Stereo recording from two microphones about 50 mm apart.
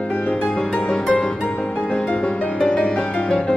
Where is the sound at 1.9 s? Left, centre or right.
Left.